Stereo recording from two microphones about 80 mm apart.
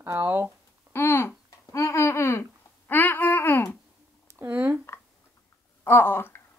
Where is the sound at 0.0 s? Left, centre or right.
Right.